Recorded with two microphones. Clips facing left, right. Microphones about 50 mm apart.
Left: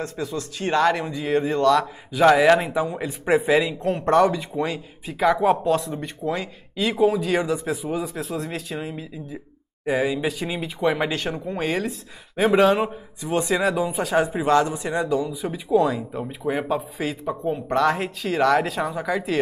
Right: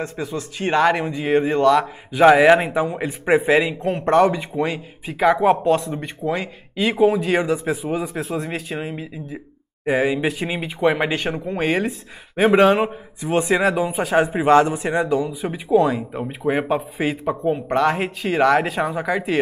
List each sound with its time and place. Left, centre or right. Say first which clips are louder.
0.0 s speech: right 2 dB; centre